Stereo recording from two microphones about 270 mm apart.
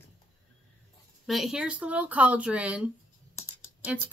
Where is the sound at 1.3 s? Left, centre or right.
Centre.